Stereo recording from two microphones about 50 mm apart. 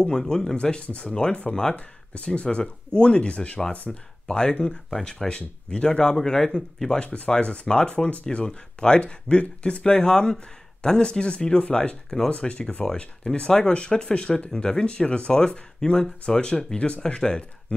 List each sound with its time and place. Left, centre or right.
0.3 s speech: centre
0.8 s speech: left
3.7 s speech: left
4.3 s speech: centre